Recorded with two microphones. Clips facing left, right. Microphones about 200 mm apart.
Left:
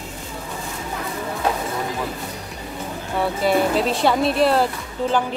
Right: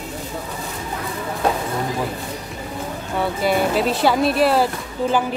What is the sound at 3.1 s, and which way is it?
A woman's voice, centre (ahead or behind).